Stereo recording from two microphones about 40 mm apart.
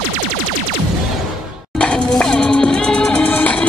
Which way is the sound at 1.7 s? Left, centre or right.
Left.